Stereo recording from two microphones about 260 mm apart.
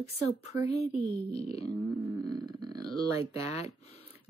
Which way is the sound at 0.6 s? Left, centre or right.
Left.